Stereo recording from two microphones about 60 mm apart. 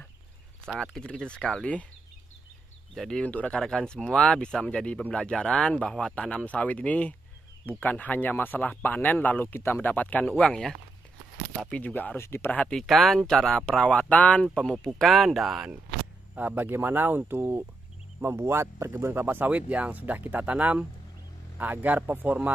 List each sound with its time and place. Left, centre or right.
0.9 s speech: centre
2.9 s speech: centre
3.3 s speech: left
3.5 s speech: centre; by 10.5 s left
10.5 s speech: centre
11.7 s speech: left
12.2 s speech: left
12.8 s speech: centre; by 14.5 s left
15.0 s speech: centre
16.3 s speech: right
19.2 s speech: right